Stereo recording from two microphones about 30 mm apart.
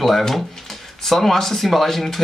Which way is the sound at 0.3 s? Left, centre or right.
Centre.